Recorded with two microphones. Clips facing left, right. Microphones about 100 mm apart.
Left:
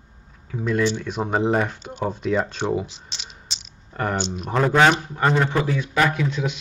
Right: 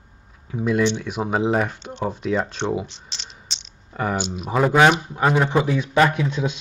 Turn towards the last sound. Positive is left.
turn(degrees=-20)  # may be behind; listen again after turning